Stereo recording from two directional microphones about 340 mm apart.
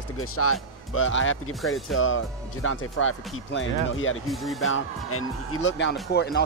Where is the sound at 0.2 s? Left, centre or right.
Left.